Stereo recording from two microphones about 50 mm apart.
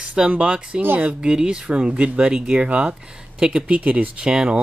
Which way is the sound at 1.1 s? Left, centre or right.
Centre.